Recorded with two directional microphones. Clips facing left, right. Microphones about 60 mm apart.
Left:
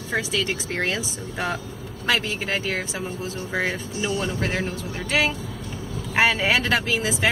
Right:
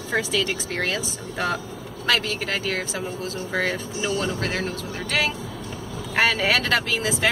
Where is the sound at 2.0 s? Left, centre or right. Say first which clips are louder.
Even; centre.